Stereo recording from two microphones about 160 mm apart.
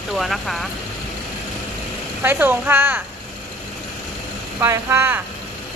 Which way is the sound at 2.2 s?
10° right (ahead or behind).